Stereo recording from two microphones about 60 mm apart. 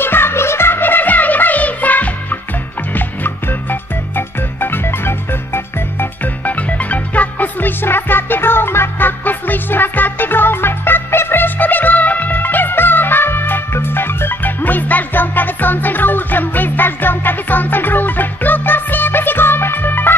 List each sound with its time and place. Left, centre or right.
0.0 s music: left
6.4 s music: left